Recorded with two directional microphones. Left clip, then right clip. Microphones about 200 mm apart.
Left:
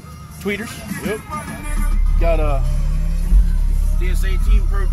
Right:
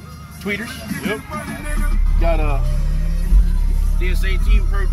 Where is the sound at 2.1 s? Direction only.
60° left (ahead or behind).